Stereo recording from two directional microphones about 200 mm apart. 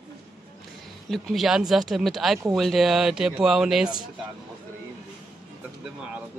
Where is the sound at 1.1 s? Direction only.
Centre (ahead or behind).